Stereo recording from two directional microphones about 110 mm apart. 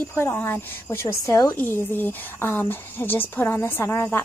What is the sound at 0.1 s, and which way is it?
Speech, 20° left (ahead or behind).